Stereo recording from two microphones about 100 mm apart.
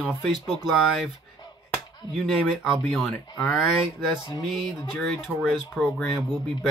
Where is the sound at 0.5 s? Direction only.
Centre (ahead or behind).